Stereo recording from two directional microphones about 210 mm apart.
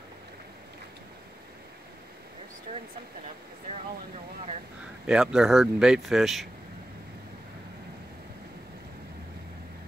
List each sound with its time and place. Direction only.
2.7 s speech: 30° right (ahead or behind)
5.0 s speech: 5° right (ahead or behind)